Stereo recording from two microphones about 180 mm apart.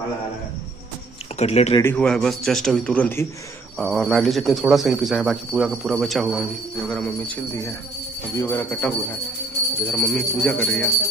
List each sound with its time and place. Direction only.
1.4 s speech: 35° left (ahead or behind)
1.8 s speech: 10° left (ahead or behind)
8.4 s a man's voice: 10° left (ahead or behind)